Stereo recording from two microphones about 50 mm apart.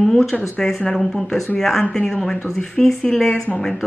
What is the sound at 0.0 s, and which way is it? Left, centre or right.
Speech, centre.